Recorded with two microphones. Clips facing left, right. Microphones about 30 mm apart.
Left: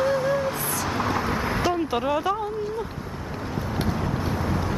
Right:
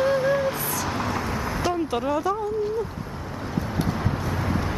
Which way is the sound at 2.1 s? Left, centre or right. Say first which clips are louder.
Even; left.